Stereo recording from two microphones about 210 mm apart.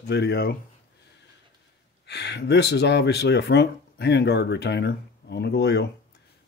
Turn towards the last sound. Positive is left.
turn(degrees=50)  # may be behind; listen again after turning